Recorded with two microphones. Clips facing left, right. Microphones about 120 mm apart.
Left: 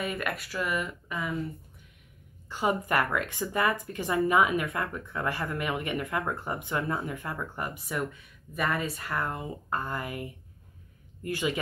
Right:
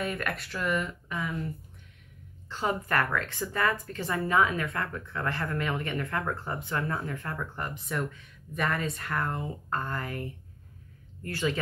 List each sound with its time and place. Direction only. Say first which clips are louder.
0.0 s speech: even; 5° left (ahead or behind)
2.5 s speech: left 2 dB; 15° left (ahead or behind)